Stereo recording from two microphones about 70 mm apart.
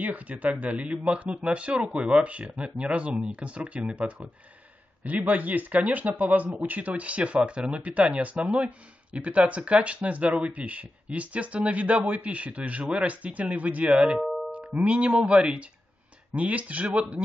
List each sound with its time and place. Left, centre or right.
0.0 s speech: right
14.2 s music: centre
14.5 s speech: right